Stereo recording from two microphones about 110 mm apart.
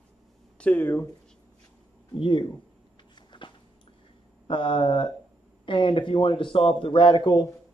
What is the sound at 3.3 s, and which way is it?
Biting, 45° left (ahead or behind).